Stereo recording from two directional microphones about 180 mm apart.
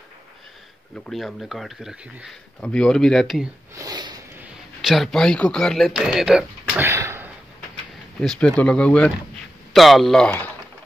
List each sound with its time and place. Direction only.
1.0 s speech: centre (ahead or behind)
3.7 s sniff: 20° right (ahead or behind)
4.4 s speech: centre (ahead or behind)
6.8 s a sound: 15° right (ahead or behind)
8.2 s speech: 5° left (ahead or behind)